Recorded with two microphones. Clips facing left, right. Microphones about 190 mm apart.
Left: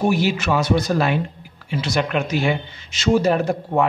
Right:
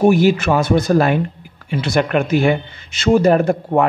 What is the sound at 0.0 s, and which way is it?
Speech, 50° right (ahead or behind).